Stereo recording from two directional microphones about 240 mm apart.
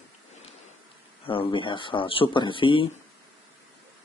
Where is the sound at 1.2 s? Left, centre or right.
Left.